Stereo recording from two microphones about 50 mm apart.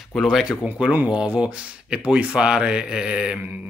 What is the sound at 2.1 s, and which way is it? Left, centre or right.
Speech, right.